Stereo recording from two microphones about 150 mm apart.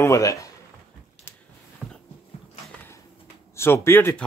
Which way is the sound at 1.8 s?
10° right (ahead or behind).